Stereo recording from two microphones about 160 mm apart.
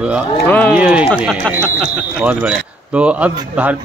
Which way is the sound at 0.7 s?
10° right (ahead or behind).